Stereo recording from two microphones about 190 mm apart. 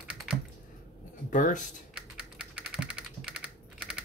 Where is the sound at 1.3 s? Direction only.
40° left (ahead or behind).